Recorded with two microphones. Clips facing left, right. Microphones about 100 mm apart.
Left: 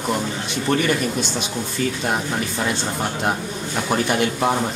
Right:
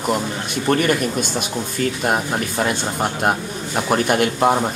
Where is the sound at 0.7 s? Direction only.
50° right (ahead or behind).